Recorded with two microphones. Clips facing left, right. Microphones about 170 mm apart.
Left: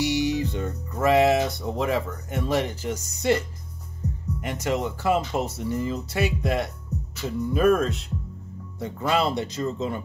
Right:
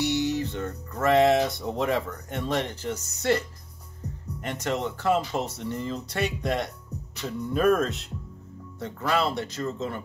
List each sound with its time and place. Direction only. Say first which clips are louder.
0.0 s speech: left 2 dB; 10° left (ahead or behind)
8.7 s speech: left 2 dB; 15° left (ahead or behind)